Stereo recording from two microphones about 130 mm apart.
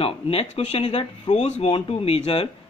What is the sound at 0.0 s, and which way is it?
Speech, 50° left (ahead or behind).